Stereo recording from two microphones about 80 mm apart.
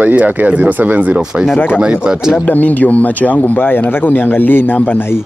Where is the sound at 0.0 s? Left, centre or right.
Centre.